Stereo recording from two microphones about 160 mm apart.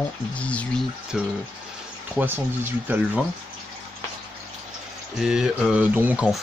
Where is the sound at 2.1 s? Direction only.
15° right (ahead or behind).